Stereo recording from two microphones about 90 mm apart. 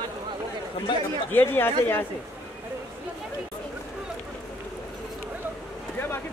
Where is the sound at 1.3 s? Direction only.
20° left (ahead or behind).